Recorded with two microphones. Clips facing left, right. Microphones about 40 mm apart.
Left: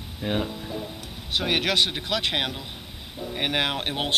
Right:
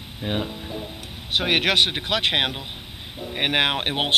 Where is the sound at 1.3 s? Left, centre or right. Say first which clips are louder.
Right 3 dB; right.